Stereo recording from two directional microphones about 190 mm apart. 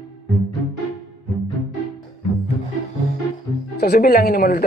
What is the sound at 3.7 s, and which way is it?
Speech, 55° left (ahead or behind).